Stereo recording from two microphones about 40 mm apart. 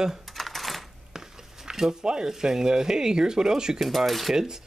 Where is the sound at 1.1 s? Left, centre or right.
Centre.